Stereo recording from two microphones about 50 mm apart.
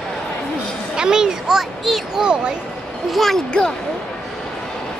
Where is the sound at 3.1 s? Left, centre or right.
Centre.